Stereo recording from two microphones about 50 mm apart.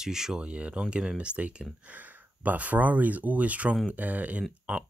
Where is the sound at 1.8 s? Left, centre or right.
Right.